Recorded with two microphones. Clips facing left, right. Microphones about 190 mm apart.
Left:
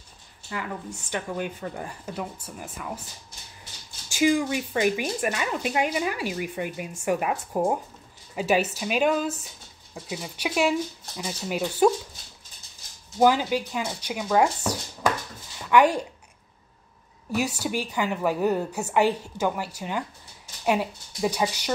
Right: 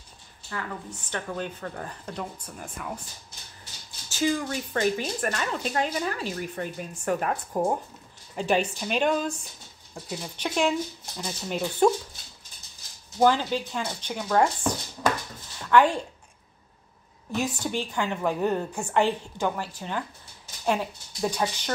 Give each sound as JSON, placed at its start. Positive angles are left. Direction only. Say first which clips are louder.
{"t": 0.5, "sound": "speech", "louder": "left 2 dB", "side_deg": 10}
{"t": 4.1, "sound": "speech", "louder": "left 4 dB", "side_deg": 10}
{"t": 13.2, "sound": "a woman's voice", "louder": "left 1 dB", "side_deg": 10}
{"t": 17.6, "sound": "speech", "louder": "left 1 dB", "side_deg": 10}